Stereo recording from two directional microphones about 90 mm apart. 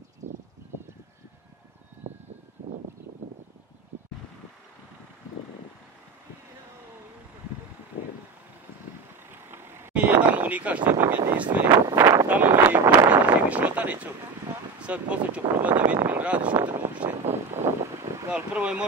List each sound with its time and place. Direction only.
9.3 s speech: 25° right (ahead or behind)
11.5 s a sound: 20° right (ahead or behind)
11.9 s speech: 30° right (ahead or behind)
12.3 s a sound: 20° right (ahead or behind)
12.9 s speech: 15° right (ahead or behind)
16.6 s vehicle: 15° right (ahead or behind)
18.3 s speech: 15° right (ahead or behind)